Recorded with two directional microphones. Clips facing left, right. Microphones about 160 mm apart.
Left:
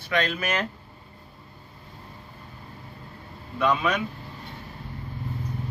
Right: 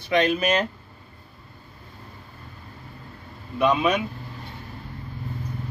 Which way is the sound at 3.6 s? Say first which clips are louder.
Right 3 dB; 15° right (ahead or behind).